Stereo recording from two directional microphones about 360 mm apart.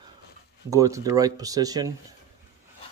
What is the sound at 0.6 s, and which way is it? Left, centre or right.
Speech, centre.